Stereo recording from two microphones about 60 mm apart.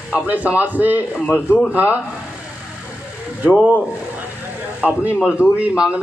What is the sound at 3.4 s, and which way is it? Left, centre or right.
Speech, right.